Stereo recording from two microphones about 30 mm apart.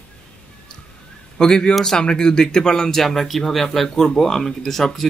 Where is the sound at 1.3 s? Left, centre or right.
Left.